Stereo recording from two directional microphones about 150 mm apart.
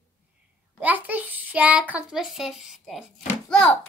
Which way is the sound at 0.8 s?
10° right (ahead or behind).